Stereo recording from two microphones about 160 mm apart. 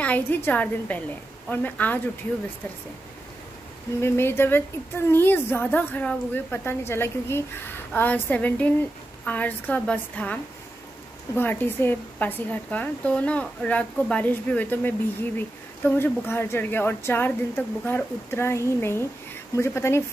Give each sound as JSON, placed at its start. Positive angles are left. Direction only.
{"t": 0.0, "sound": "a woman's voice", "side_deg": 10}
{"t": 4.0, "sound": "a woman's voice", "side_deg": 15}